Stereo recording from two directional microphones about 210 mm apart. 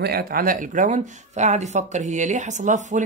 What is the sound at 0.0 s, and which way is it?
Speech, 45° right (ahead or behind).